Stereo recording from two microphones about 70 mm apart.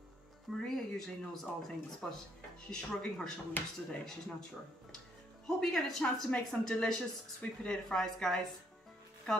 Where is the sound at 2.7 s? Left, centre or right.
Centre.